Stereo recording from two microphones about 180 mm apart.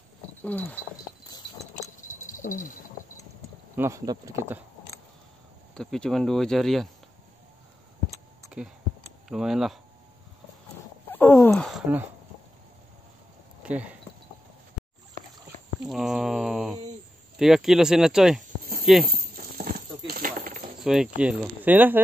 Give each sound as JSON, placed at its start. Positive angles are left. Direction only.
{"t": 0.4, "sound": "a sound", "side_deg": 10}
{"t": 2.3, "sound": "rattle", "side_deg": 45}
{"t": 3.7, "sound": "speech", "side_deg": -15}
{"t": 5.8, "sound": "speech", "side_deg": 5}
{"t": 9.3, "sound": "speech", "side_deg": 0}
{"t": 11.1, "sound": "a sound", "side_deg": 10}
{"t": 11.5, "sound": "a sound", "side_deg": 0}
{"t": 13.6, "sound": "speech", "side_deg": -5}
{"t": 15.9, "sound": "mantra", "side_deg": 0}
{"t": 17.4, "sound": "speech", "side_deg": 0}
{"t": 18.4, "sound": "a sound", "side_deg": -50}
{"t": 19.0, "sound": "clip-clop", "side_deg": -55}
{"t": 20.8, "sound": "speech", "side_deg": -5}